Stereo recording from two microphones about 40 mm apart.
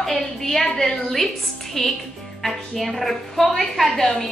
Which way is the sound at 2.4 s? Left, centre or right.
Centre.